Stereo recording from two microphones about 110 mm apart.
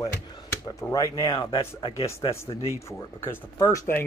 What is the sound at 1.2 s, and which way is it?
Speech, 50° left (ahead or behind).